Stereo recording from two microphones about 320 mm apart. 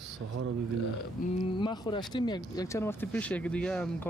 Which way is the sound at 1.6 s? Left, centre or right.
Centre.